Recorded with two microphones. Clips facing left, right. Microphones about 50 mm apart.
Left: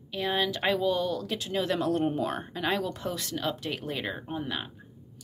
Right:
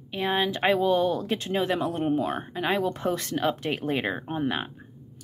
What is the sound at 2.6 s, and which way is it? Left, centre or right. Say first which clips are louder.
A woman's voice: right 4 dB; right.